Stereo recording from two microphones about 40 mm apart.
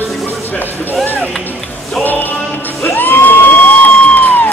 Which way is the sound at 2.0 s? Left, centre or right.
Left.